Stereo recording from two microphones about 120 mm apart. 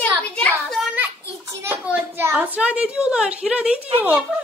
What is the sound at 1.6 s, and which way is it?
A child's voice, 15° right (ahead or behind).